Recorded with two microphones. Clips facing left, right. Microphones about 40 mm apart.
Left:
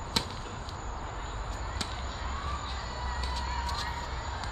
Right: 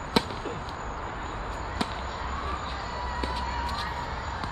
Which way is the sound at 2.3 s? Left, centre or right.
Centre.